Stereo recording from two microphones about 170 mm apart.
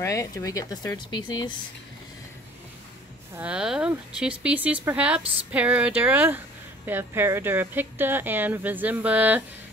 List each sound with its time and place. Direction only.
0.0 s speech: 20° left (ahead or behind)
3.3 s speech: 5° right (ahead or behind)